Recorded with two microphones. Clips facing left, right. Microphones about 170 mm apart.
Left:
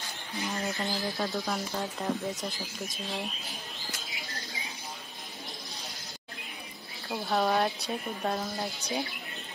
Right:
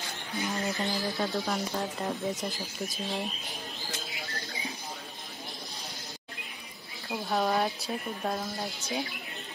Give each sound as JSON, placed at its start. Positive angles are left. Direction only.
{"t": 0.4, "sound": "speech", "side_deg": 0}
{"t": 7.2, "sound": "speech", "side_deg": 0}